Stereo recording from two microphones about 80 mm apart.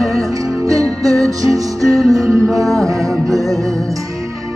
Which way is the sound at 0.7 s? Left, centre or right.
Right.